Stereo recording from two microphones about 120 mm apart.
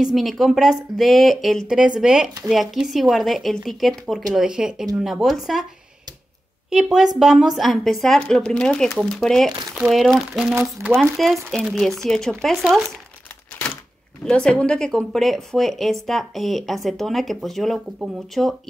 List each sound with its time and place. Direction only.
0.0 s speech: centre (ahead or behind)
6.7 s speech: 5° right (ahead or behind)
10.5 s speech: 20° right (ahead or behind)
11.1 s speech: centre (ahead or behind)
14.2 s speech: 5° left (ahead or behind)